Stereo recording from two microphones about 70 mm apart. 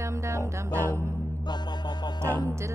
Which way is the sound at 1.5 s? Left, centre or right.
Left.